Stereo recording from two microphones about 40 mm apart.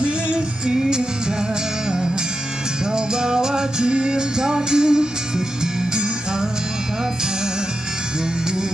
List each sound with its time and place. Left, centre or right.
0.0 s music: right
2.9 s music: centre